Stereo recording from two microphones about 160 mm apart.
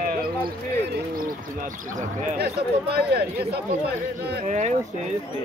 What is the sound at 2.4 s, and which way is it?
Speech, 90° right.